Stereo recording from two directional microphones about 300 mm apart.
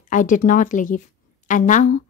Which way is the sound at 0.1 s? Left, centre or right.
Left.